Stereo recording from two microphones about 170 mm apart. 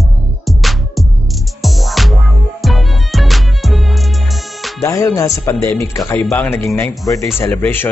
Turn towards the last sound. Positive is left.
turn(degrees=10)  # may be behind; listen again after turning